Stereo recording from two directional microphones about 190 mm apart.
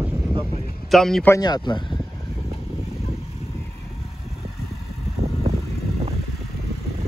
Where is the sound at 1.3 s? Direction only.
20° left (ahead or behind).